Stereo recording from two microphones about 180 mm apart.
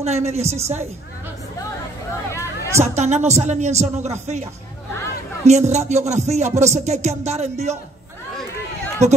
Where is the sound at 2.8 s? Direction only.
40° right (ahead or behind).